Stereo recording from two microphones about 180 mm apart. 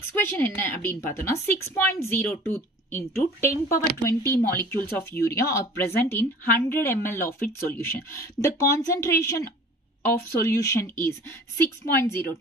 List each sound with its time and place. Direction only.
0.2 s a woman's voice: 10° left (ahead or behind)
10.4 s a woman's voice: 20° left (ahead or behind)